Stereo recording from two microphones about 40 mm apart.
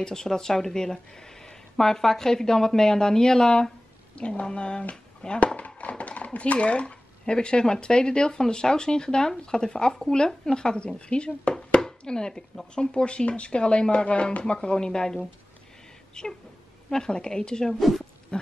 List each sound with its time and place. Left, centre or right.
0.0 s speech: centre
5.8 s a sound: left
7.3 s speech: centre
11.7 s chopping: left
12.7 s speech: left
17.7 s speech: centre
18.3 s speech: left